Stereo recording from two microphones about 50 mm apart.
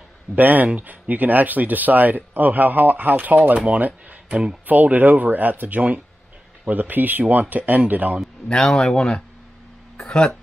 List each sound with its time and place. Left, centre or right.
0.4 s speech: right
3.5 s speech: right
3.8 s speech: right
8.5 s speech: centre